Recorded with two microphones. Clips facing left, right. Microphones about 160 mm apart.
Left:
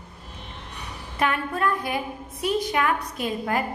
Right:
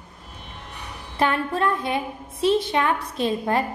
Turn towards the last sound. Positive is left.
turn(degrees=-30)  # may be behind; listen again after turning